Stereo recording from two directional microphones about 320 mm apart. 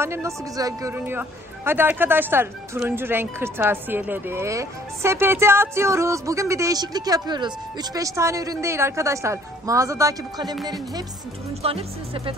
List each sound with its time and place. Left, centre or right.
0.0 s speech: centre